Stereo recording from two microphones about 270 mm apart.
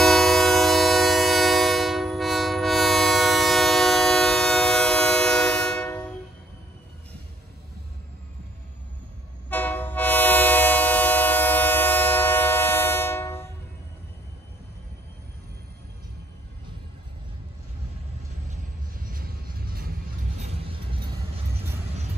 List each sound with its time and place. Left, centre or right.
0.0 s train: centre
9.5 s train: centre
18.9 s vehicle: right